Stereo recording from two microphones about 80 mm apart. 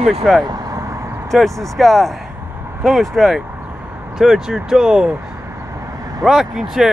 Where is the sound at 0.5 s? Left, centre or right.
Right.